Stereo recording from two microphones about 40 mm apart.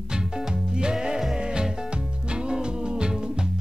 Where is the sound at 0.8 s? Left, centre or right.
Centre.